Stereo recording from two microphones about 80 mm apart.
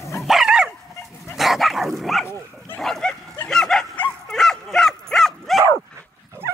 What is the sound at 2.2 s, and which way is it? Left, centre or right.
Dog, left.